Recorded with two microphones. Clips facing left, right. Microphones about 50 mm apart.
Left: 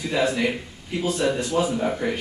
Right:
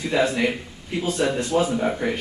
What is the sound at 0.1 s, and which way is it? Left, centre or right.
Speech, centre.